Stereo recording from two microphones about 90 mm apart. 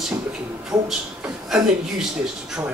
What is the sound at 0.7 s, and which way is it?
Speech, 5° right (ahead or behind).